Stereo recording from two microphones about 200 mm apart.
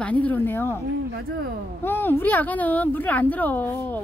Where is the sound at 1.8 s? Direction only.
10° left (ahead or behind).